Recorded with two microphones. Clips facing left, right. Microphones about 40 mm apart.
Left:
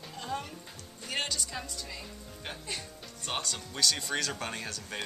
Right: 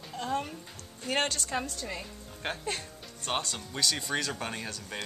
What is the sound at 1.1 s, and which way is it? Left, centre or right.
A woman's voice, right.